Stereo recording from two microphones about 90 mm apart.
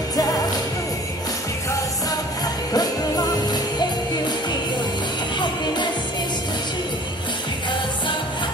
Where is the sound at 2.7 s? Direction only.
45° left (ahead or behind).